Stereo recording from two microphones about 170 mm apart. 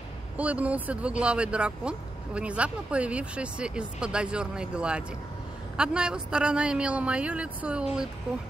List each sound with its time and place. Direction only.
0.4 s speech: 10° right (ahead or behind)